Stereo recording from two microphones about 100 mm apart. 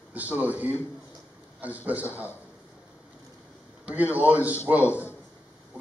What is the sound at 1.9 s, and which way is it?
Speech, 15° right (ahead or behind).